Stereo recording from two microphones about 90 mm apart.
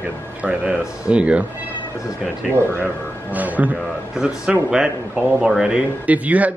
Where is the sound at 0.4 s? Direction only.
15° right (ahead or behind).